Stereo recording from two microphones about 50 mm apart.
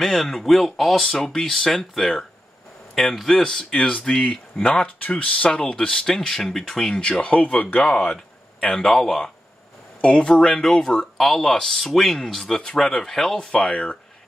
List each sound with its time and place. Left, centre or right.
0.0 s speech: centre
0.9 s speech: centre
3.3 s speech: centre; by 7.8 s left
8.0 s a sound: left
8.7 s speech: centre
10.0 s speech: centre